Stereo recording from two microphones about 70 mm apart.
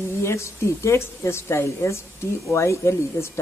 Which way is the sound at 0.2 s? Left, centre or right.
Left.